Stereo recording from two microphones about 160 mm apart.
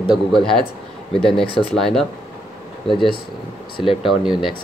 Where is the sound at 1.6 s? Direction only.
5° left (ahead or behind).